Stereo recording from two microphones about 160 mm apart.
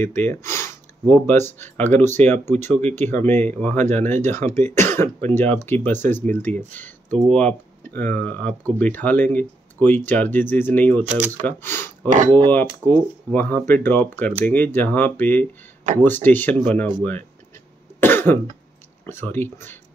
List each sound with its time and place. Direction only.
0.0 s speech: 10° left (ahead or behind)
11.1 s speech: 10° right (ahead or behind)
11.4 s speech: 15° left (ahead or behind)
18.0 s cough: 15° left (ahead or behind)
19.0 s speech: 15° left (ahead or behind)